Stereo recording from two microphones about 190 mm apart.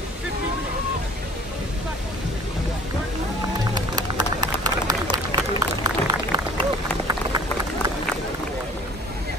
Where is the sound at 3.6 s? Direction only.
20° right (ahead or behind).